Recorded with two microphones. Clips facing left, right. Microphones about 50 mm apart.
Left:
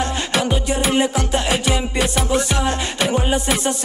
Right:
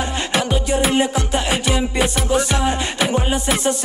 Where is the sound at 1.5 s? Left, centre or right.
Centre.